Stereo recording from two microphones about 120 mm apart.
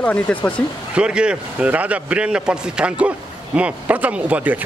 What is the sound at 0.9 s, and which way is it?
A man's voice, 10° right (ahead or behind).